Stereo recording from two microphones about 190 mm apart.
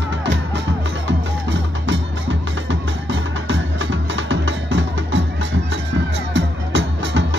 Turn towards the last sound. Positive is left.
turn(degrees=-70)  # may be behind; listen again after turning